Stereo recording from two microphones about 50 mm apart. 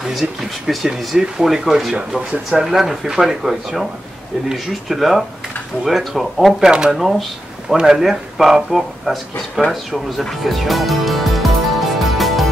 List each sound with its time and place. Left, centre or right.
0.1 s speech: centre
6.6 s speech: centre
6.9 s speech: centre
9.7 s music: centre